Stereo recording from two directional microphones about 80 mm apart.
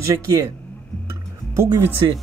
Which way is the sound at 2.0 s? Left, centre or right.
Right.